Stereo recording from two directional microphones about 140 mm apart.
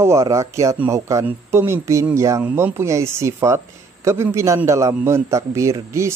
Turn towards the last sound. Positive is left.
turn(degrees=-20)  # may be behind; listen again after turning